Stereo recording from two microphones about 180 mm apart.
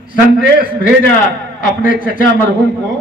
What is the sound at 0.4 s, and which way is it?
A man's voice, 50° left (ahead or behind).